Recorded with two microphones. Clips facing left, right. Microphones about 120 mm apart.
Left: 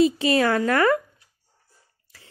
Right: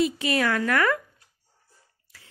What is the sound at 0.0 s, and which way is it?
Speech, 30° left (ahead or behind).